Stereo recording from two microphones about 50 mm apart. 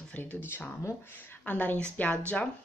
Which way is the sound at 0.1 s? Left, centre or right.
Left.